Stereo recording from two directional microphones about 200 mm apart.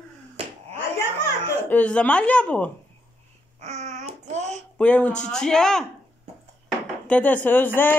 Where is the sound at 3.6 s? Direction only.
35° right (ahead or behind).